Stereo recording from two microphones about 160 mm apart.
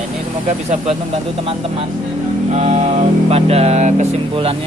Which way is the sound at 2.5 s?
45° right (ahead or behind).